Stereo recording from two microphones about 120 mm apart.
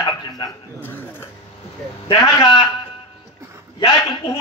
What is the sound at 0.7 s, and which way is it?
Dog, 15° left (ahead or behind).